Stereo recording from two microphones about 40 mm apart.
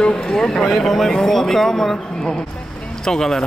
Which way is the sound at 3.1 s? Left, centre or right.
Centre.